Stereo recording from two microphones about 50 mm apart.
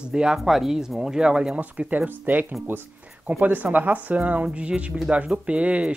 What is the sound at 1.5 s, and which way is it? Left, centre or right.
Speech, right.